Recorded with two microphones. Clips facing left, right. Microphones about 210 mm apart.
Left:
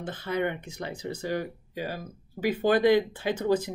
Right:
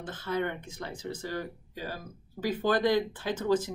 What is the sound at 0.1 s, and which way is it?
Speech, 15° left (ahead or behind).